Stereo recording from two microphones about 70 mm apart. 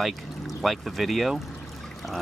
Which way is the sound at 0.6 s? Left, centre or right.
Centre.